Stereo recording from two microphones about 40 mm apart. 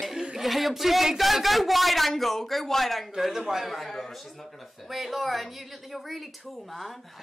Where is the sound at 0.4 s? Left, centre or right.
Centre.